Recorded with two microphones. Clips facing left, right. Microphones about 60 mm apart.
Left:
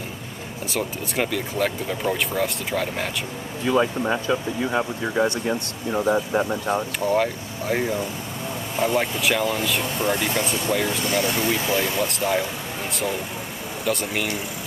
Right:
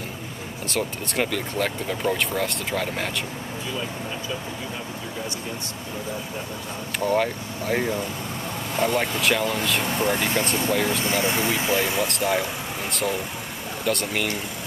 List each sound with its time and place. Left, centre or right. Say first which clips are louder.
0.7 s speech: even; centre
3.6 s speech: left 13 dB; left
7.0 s speech: right 4 dB; centre
11.1 s speech: left 1 dB; right
12.1 s speech: left 1 dB; centre